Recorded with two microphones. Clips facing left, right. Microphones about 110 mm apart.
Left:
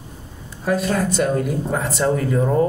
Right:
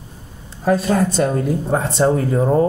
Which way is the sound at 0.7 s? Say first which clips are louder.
Right 3 dB; 30° right (ahead or behind).